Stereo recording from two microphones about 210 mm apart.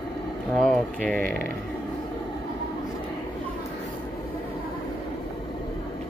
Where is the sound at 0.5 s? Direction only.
Centre (ahead or behind).